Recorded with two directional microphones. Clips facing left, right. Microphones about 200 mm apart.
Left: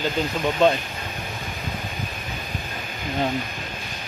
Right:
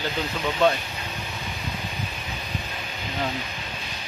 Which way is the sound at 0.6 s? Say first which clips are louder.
Left 2 dB; 20° left (ahead or behind).